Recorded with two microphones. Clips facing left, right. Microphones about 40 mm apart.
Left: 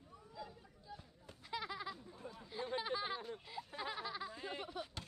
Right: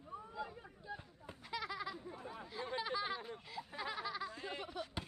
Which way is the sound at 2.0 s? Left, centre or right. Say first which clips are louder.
Right 4 dB; right.